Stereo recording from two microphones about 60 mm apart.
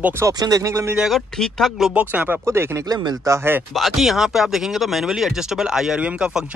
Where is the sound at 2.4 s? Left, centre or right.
Right.